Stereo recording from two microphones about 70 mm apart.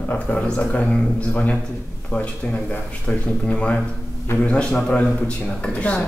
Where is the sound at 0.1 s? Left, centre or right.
Centre.